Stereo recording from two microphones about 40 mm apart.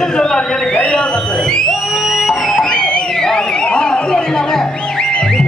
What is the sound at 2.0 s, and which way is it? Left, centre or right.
Music, centre.